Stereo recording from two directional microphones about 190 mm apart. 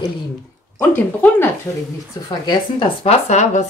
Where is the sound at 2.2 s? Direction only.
30° left (ahead or behind).